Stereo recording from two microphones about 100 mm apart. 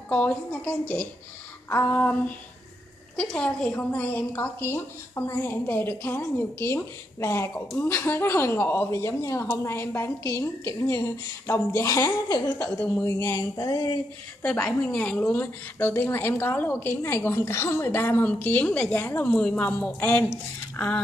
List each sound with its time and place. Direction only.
0.1 s a woman's voice: 15° left (ahead or behind); by 12.4 s 30° left (ahead or behind)
12.6 s a woman's voice: 20° left (ahead or behind)
13.0 s a woman's voice: 30° left (ahead or behind)
14.9 s a woman's voice: 15° left (ahead or behind)